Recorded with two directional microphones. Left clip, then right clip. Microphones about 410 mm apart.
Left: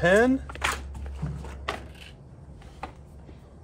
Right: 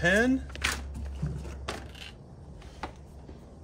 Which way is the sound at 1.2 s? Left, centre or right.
Centre.